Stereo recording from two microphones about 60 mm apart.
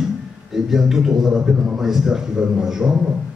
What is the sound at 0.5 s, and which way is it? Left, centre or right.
A man's voice, centre.